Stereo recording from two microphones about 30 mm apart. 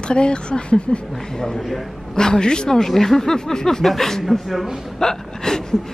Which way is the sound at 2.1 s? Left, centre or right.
Left.